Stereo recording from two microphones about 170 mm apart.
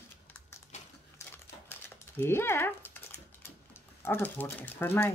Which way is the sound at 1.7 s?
15° left (ahead or behind).